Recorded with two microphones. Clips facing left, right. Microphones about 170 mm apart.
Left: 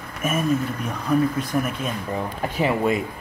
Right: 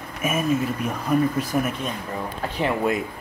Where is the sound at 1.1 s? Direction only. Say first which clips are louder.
Left 1 dB; 5° right (ahead or behind).